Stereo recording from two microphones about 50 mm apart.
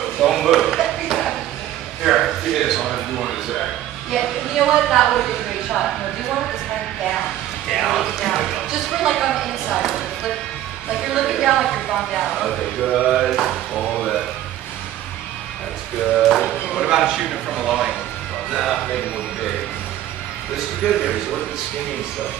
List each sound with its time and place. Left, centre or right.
0.2 s chop: centre
2.0 s a sound: centre
5.7 s speech: centre
7.7 s a woman's voice: centre
13.7 s music: centre
16.2 s a sound: centre
16.6 s a woman's voice: centre
20.8 s a woman's voice: centre